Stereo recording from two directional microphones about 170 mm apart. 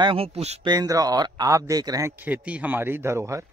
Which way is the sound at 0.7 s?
20° right (ahead or behind).